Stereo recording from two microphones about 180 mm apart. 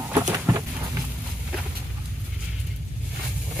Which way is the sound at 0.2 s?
20° right (ahead or behind).